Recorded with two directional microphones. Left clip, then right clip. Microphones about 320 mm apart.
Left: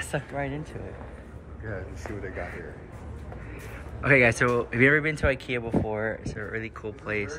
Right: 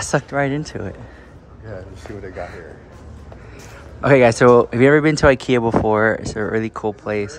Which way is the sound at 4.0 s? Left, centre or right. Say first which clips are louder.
Right 8 dB; centre.